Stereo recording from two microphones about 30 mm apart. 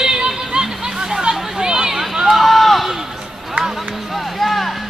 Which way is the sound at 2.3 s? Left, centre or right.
Centre.